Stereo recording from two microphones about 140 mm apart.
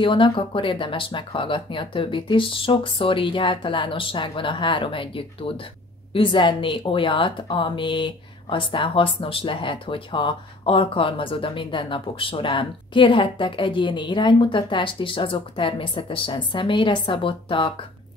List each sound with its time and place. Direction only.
0.0 s speech: 35° left (ahead or behind)